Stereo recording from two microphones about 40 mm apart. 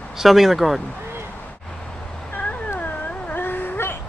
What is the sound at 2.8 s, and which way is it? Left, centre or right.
Dog, left.